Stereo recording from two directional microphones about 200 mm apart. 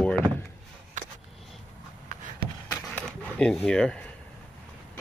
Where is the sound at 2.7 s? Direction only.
5° left (ahead or behind).